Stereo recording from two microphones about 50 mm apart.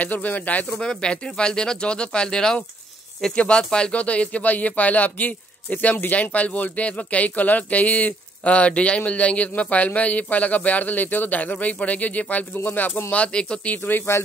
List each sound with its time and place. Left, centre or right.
0.0 s speech: left
0.7 s speech: centre; by 13.0 s left
13.1 s speech: left